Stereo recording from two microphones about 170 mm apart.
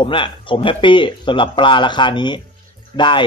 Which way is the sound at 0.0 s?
30° left (ahead or behind).